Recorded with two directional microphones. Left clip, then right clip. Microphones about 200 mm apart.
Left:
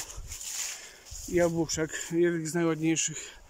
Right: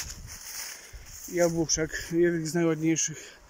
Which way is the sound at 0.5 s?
Centre (ahead or behind).